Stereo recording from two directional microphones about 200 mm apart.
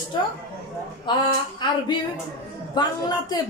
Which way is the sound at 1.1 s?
25° left (ahead or behind).